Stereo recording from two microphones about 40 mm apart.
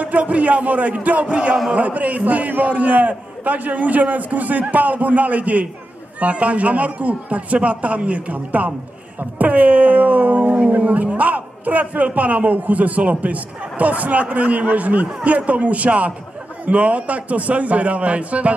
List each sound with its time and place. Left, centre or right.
0.0 s a man's voice: right